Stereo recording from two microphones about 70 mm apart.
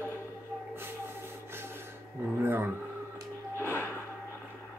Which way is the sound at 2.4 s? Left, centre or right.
Right.